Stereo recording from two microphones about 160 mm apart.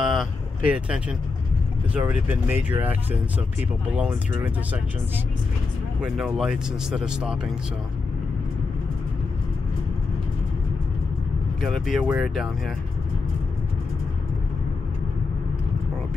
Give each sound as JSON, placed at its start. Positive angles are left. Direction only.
{"t": 0.0, "sound": "vehicle", "side_deg": 0}
{"t": 0.7, "sound": "speech", "side_deg": -5}
{"t": 6.0, "sound": "speech", "side_deg": -5}
{"t": 11.6, "sound": "speech", "side_deg": 0}